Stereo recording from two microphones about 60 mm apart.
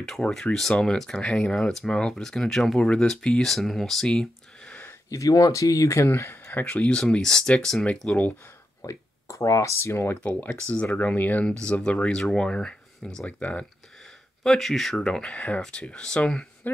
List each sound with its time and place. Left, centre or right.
0.3 s speech: centre
5.1 s speech: left
6.6 s speech: centre
8.8 s speech: left
11.0 s speech: left
11.6 s speech: centre
13.4 s speech: left
14.4 s speech: centre
16.6 s speech: left